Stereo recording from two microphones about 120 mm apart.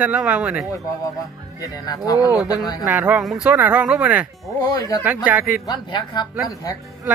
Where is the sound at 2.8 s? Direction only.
10° right (ahead or behind).